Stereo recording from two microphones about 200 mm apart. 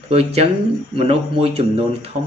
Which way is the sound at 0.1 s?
30° right (ahead or behind).